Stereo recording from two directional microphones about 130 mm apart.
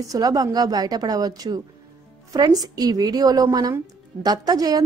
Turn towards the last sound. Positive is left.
turn(degrees=-30)  # may be behind; listen again after turning